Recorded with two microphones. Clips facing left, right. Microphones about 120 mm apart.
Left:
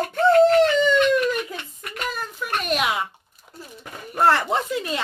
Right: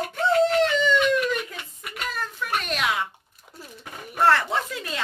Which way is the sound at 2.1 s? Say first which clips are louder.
Right 1 dB; 15° left (ahead or behind).